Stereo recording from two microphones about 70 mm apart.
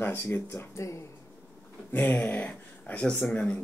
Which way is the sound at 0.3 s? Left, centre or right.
Left.